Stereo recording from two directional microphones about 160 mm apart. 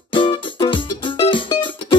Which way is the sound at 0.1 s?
30° left (ahead or behind).